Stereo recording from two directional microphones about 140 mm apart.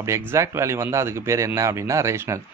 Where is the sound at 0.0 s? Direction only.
20° right (ahead or behind).